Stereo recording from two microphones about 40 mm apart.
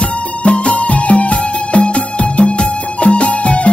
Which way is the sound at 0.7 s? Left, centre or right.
Left.